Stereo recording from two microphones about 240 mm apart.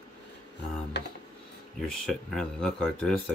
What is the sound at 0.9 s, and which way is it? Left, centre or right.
Speech, left.